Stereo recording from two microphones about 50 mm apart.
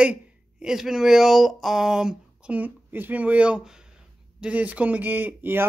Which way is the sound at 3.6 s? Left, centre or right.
Centre.